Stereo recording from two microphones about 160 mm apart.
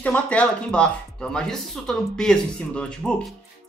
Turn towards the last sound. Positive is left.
turn(degrees=5)  # may be behind; listen again after turning